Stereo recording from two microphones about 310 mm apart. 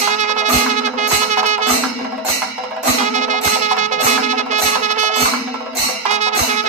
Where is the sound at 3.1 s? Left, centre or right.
Right.